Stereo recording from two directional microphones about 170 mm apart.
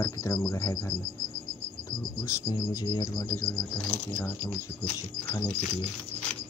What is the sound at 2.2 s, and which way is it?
Speech, 20° left (ahead or behind).